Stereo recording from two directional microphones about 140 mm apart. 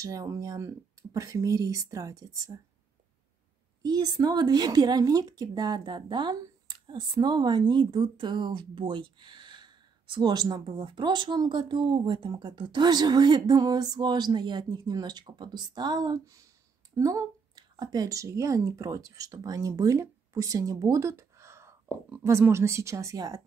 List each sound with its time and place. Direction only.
0.0 s speech: 25° right (ahead or behind)
3.8 s a woman's voice: 30° right (ahead or behind)